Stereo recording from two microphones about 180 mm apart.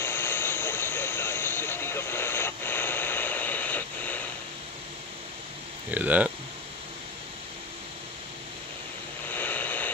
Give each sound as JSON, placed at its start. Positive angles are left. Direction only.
{"t": 0.0, "sound": "vehicle", "side_deg": 10}
{"t": 5.9, "sound": "speech", "side_deg": -10}
{"t": 9.3, "sound": "a sound", "side_deg": 10}